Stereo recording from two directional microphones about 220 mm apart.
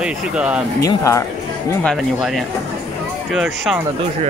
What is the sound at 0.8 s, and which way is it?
Speech, 15° left (ahead or behind).